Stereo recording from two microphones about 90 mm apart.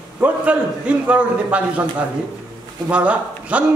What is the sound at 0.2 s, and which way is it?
A man's voice, 15° right (ahead or behind).